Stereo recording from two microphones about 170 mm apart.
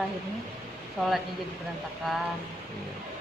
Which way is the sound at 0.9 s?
Centre (ahead or behind).